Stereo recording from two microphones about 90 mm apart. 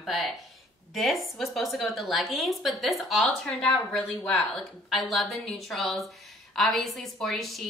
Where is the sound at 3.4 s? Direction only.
15° left (ahead or behind).